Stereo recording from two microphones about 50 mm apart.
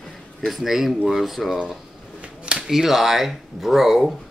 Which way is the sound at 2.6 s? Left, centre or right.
Centre.